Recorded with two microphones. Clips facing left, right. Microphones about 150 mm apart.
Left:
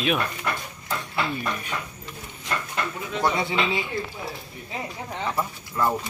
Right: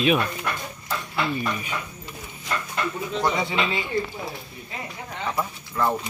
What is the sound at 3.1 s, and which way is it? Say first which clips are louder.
Speech: left 1 dB; 5° left (ahead or behind).